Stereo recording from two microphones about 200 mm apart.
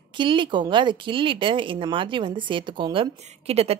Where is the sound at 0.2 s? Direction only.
25° right (ahead or behind).